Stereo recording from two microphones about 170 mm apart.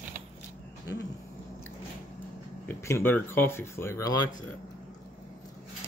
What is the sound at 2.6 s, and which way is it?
Speech, 15° left (ahead or behind).